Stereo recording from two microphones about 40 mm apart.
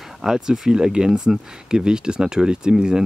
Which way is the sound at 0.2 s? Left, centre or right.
Centre.